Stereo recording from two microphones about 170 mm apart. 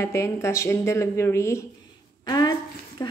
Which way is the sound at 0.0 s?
15° left (ahead or behind).